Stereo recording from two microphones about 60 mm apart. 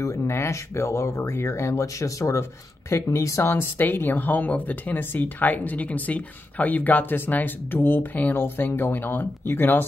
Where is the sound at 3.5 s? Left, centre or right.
Left.